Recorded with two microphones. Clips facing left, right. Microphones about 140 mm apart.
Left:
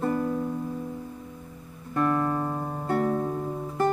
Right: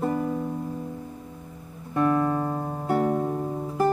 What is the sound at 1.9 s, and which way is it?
Music, 10° right (ahead or behind).